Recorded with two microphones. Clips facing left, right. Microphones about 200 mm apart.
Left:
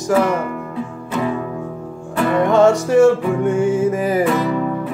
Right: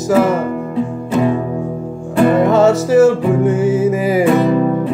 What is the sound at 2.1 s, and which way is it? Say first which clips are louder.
Music: right 5 dB; 25° right (ahead or behind).